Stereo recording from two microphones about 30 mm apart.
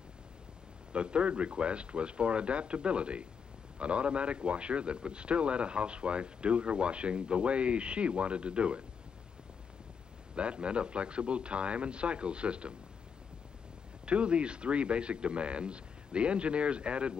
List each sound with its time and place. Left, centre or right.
0.9 s speech: right
10.3 s speech: right
14.0 s speech: right